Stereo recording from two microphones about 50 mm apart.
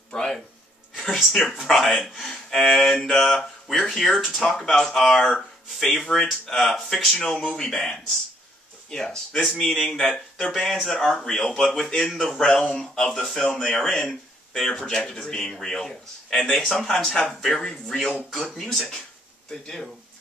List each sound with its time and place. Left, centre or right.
0.1 s speech: centre
1.0 s speech: centre
8.9 s speech: centre
10.0 s speech: centre
13.7 s speech: left
14.5 s speech: centre